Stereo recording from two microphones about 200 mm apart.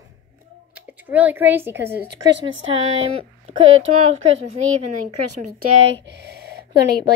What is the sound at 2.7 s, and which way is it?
Speech, 30° right (ahead or behind).